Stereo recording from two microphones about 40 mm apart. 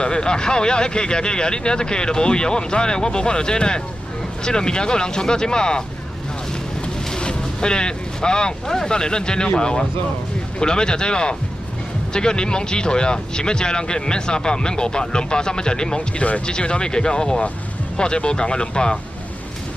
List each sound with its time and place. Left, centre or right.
0.0 s speech: left
7.2 s speech: left
16.2 s speech: left
16.4 s speech: left